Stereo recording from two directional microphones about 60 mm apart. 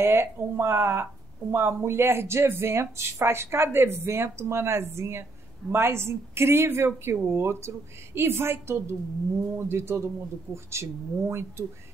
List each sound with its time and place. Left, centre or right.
0.0 s speech: right